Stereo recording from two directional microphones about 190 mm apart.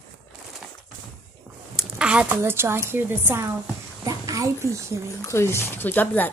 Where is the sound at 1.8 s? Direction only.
5° right (ahead or behind).